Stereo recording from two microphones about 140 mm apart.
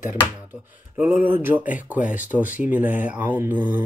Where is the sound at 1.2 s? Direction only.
15° right (ahead or behind).